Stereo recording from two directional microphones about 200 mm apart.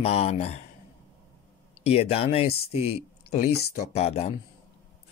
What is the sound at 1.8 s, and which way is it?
Speech, 30° left (ahead or behind).